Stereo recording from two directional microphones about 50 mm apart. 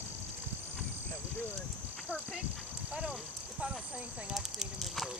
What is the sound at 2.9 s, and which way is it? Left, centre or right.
Speech, centre.